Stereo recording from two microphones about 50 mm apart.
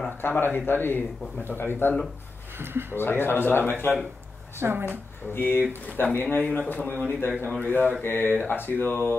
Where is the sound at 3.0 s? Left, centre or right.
Left.